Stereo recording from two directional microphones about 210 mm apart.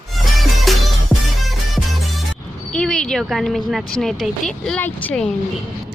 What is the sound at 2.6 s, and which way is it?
Speech, 5° left (ahead or behind).